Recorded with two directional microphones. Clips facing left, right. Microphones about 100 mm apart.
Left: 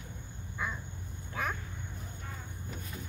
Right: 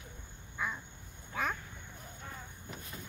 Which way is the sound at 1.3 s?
Centre (ahead or behind).